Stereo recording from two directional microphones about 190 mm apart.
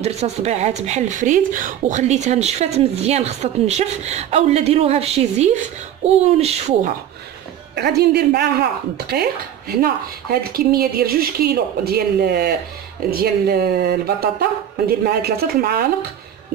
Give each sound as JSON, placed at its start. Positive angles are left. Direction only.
{"t": 0.0, "sound": "a woman's voice", "side_deg": -35}
{"t": 7.7, "sound": "a woman's voice", "side_deg": -60}